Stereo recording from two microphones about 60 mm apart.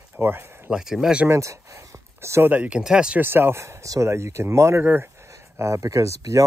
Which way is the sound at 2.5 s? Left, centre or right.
Right.